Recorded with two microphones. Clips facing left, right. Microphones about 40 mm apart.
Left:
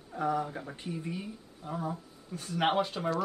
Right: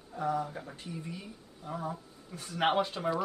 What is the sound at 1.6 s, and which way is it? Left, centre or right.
Speech, centre.